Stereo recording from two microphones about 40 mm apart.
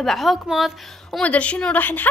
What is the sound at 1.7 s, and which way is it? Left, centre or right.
Speech, left.